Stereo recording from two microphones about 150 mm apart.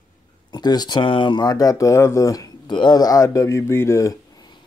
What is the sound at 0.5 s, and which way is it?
A man's voice, 25° left (ahead or behind).